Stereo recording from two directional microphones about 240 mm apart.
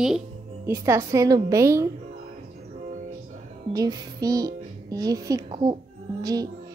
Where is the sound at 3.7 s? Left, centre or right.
Centre.